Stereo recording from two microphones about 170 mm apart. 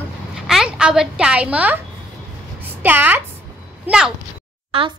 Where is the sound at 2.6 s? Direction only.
10° right (ahead or behind).